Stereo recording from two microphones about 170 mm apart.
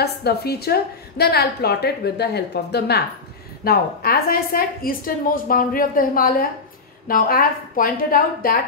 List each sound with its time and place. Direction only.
0.0 s a woman's voice: 70° left (ahead or behind)
3.6 s a woman's voice: 60° left (ahead or behind)